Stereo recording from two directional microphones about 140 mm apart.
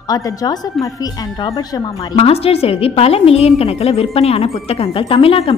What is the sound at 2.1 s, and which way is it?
A woman's voice, 45° left (ahead or behind).